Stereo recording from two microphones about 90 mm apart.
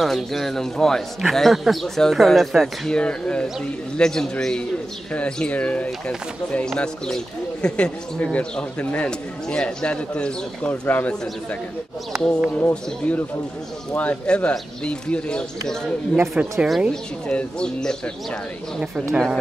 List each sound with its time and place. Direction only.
0.0 s a man's voice: 5° left (ahead or behind); by 11.1 s 20° left (ahead or behind)
12.5 s speech: 15° left (ahead or behind)
16.2 s a man's voice: 5° right (ahead or behind)
16.9 s speech: 10° left (ahead or behind)